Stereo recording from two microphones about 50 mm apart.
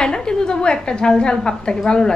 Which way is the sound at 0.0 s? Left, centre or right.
Centre.